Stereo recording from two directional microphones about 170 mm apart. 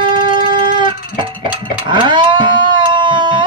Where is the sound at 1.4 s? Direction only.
30° right (ahead or behind).